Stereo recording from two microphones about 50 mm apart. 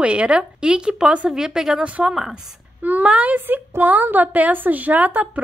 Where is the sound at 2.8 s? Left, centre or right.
Right.